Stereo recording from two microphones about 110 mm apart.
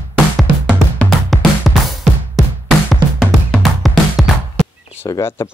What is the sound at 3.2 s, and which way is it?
Music, centre (ahead or behind).